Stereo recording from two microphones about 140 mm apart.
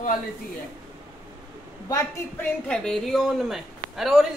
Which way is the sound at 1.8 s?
25° left (ahead or behind).